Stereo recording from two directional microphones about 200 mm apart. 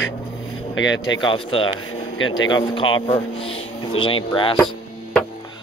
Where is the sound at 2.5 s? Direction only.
25° left (ahead or behind).